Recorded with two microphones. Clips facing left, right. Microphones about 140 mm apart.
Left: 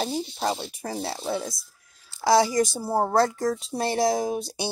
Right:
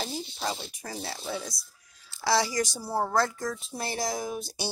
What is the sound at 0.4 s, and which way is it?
Speech, 30° left (ahead or behind).